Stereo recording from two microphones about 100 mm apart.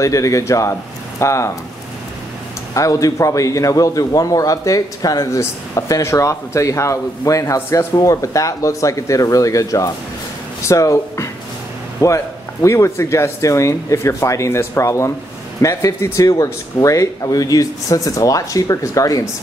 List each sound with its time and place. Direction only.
0.0 s a man's voice: 30° left (ahead or behind)
2.7 s a man's voice: 35° left (ahead or behind)